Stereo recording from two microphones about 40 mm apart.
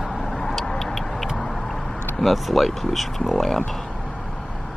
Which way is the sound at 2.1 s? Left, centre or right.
Centre.